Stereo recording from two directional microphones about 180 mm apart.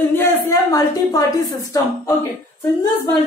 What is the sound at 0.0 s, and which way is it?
A woman's voice, 15° left (ahead or behind).